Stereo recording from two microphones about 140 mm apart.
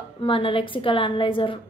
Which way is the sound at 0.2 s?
40° left (ahead or behind).